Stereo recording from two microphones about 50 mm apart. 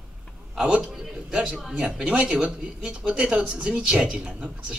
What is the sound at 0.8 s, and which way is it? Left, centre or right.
Speech, centre.